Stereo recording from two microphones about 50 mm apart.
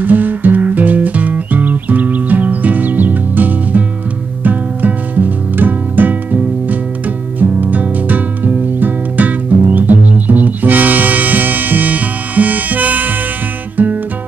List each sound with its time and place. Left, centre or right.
0.0 s music: right
7.3 s music: right